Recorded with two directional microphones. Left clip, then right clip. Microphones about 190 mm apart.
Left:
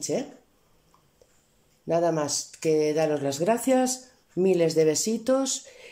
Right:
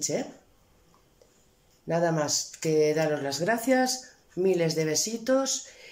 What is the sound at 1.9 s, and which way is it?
Speech, 10° left (ahead or behind).